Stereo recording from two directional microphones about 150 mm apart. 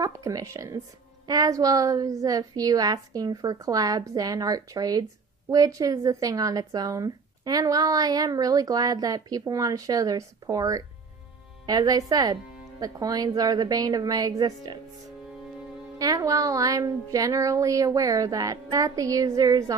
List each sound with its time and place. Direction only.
0.0 s speech: 25° right (ahead or behind)
16.0 s speech: 25° right (ahead or behind)